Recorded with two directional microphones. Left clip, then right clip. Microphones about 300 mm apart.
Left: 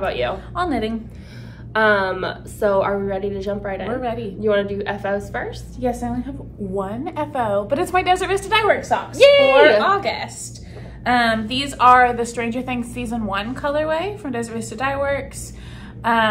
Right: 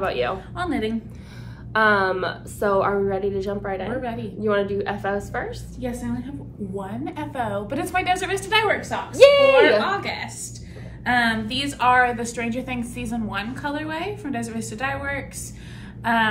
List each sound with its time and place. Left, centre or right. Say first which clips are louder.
0.0 s a woman's voice: left 2 dB; centre
0.6 s a woman's voice: left 5 dB; centre
1.7 s a woman's voice: left 2 dB; centre
4.0 s a woman's voice: left 5 dB; centre
4.4 s a woman's voice: left 2 dB; centre
5.8 s a woman's voice: left 8 dB; centre
9.2 s a woman's voice: left 1 dB; centre
9.8 s a woman's voice: left 5 dB; centre
16.0 s gasp: left 3 dB; centre